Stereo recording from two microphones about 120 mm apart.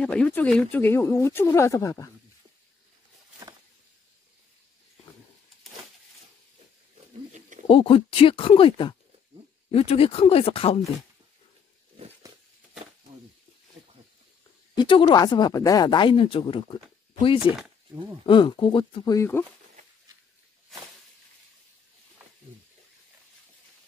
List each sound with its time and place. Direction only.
0.0 s speech: 10° left (ahead or behind); by 2.0 s 25° left (ahead or behind)
7.3 s a sound: 90° right
7.6 s speech: 50° left (ahead or behind)
14.8 s speech: 40° left (ahead or behind)
18.2 s speech: 45° left (ahead or behind)
19.1 s speech: 20° left (ahead or behind)